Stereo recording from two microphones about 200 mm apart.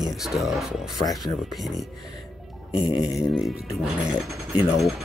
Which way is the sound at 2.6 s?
25° left (ahead or behind).